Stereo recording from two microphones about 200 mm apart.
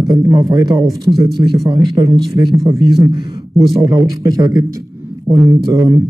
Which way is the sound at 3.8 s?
15° right (ahead or behind).